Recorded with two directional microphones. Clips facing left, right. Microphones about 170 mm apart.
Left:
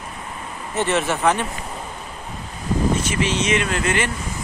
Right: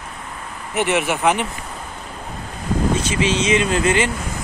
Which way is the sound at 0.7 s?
15° right (ahead or behind).